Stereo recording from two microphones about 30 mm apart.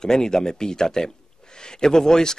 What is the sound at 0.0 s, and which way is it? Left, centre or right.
Speech, left.